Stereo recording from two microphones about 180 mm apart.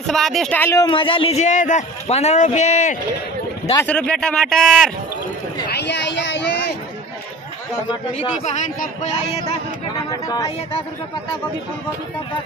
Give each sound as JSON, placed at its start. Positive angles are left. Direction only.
{"t": 0.0, "sound": "speech", "side_deg": 0}
{"t": 3.8, "sound": "a man's voice", "side_deg": 5}
{"t": 5.7, "sound": "speech", "side_deg": 70}
{"t": 8.1, "sound": "speech", "side_deg": 40}
{"t": 10.2, "sound": "speech", "side_deg": 20}